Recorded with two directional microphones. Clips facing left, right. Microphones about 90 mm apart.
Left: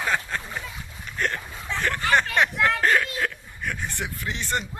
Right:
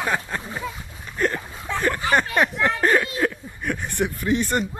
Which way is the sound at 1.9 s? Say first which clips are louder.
Left 1 dB; 10° right (ahead or behind).